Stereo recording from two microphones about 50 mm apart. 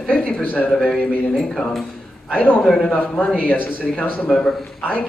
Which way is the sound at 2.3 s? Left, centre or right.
Left.